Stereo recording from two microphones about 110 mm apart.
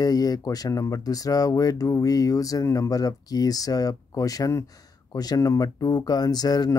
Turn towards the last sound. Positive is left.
turn(degrees=35)  # may be behind; listen again after turning